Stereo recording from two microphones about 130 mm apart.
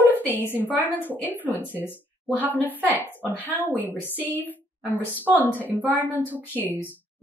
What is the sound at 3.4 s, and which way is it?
A woman's voice, 15° left (ahead or behind).